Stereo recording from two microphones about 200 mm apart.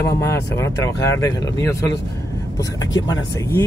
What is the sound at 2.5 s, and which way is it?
Speech, 15° left (ahead or behind).